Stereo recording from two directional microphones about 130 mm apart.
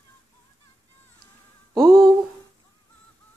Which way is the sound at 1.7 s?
5° left (ahead or behind).